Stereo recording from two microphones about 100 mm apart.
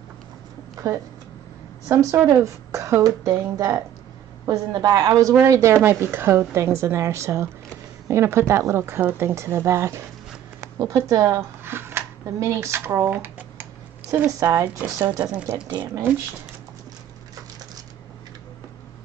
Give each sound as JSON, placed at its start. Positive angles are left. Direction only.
{"t": 1.9, "sound": "a woman's voice", "side_deg": -35}
{"t": 10.6, "sound": "a sound", "side_deg": -35}
{"t": 11.1, "sound": "a woman's voice", "side_deg": -35}
{"t": 11.6, "sound": "a sound", "side_deg": -25}
{"t": 13.1, "sound": "typewriter", "side_deg": -20}
{"t": 14.4, "sound": "a woman's voice", "side_deg": -30}